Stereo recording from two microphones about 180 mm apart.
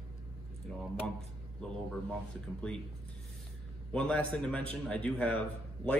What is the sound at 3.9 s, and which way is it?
Speech, 5° left (ahead or behind).